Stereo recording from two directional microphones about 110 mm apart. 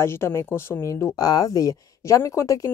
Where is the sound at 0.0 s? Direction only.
25° left (ahead or behind).